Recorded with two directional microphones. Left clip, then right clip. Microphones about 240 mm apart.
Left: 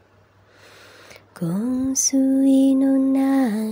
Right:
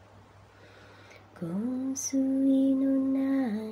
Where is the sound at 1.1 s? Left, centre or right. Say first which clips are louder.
Left 9 dB; left.